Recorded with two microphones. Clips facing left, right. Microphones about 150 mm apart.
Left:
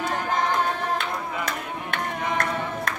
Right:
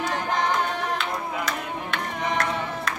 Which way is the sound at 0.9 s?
55° left (ahead or behind).